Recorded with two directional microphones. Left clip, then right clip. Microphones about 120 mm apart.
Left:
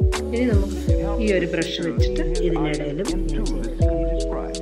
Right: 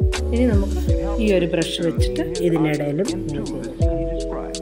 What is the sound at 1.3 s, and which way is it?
Speech, 60° right (ahead or behind).